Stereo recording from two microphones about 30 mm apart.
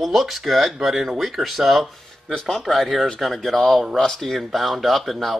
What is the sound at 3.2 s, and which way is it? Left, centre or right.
Speech, centre.